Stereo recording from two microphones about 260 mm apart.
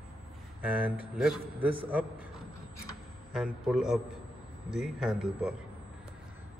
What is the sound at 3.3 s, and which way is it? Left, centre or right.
A man's voice, centre.